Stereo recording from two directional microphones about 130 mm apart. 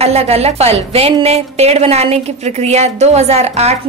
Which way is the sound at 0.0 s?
50° right (ahead or behind).